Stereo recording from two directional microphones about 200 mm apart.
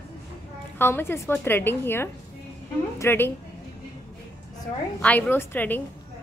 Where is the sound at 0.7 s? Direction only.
10° left (ahead or behind).